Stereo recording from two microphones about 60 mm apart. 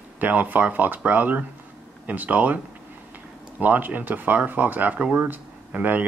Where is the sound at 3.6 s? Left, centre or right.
Right.